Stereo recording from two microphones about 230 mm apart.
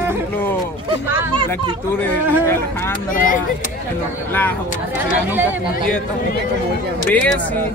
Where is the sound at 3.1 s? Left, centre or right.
Left.